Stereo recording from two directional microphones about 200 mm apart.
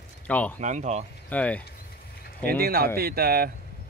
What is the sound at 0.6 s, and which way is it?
Speech, 35° right (ahead or behind).